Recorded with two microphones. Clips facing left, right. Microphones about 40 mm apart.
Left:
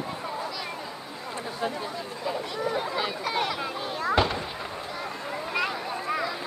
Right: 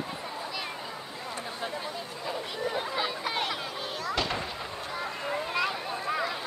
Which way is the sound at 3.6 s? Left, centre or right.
Left.